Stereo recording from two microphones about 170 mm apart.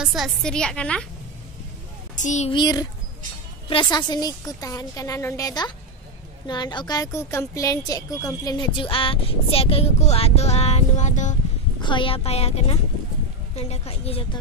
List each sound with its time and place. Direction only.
0.0 s a woman's voice: centre (ahead or behind)
2.1 s a child's voice: 45° left (ahead or behind)
2.5 s a woman's voice: 25° left (ahead or behind); by 11.3 s 45° left (ahead or behind)
11.8 s a woman's voice: 30° left (ahead or behind)